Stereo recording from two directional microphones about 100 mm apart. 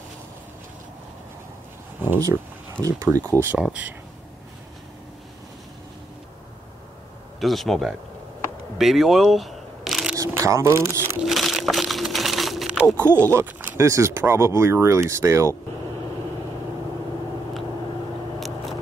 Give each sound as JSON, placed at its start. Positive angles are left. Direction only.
{"t": 2.8, "sound": "speech", "side_deg": -35}
{"t": 3.5, "sound": "speech", "side_deg": -10}
{"t": 7.3, "sound": "speech", "side_deg": 0}
{"t": 8.7, "sound": "single-lens reflex camera", "side_deg": 0}
{"t": 10.1, "sound": "speech", "side_deg": -35}
{"t": 11.2, "sound": "a sound", "side_deg": 0}
{"t": 13.0, "sound": "speech", "side_deg": -25}